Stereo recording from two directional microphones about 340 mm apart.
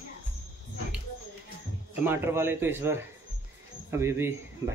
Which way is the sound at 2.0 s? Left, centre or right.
Centre.